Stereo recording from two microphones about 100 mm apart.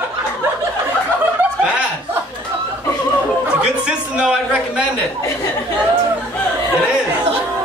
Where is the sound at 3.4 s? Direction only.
10° right (ahead or behind).